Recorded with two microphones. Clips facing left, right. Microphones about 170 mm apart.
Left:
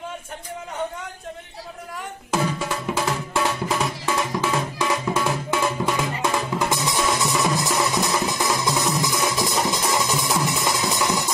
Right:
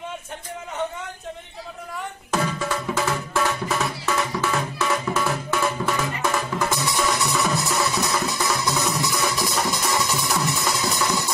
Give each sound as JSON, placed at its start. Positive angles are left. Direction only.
{"t": 2.3, "sound": "music", "side_deg": 10}